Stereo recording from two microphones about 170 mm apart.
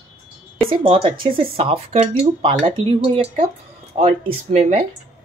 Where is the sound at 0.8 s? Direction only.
35° right (ahead or behind).